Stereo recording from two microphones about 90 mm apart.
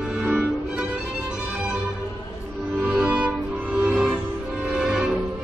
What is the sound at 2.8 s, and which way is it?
Music, 10° right (ahead or behind).